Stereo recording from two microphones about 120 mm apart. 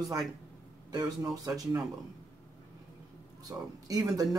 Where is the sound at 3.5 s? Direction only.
30° right (ahead or behind).